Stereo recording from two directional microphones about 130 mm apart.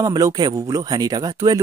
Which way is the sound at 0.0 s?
30° right (ahead or behind).